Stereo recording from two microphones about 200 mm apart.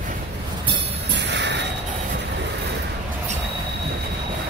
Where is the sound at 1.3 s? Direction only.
60° right (ahead or behind).